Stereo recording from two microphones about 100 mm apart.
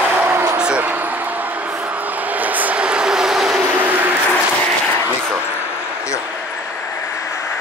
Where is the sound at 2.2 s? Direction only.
15° right (ahead or behind).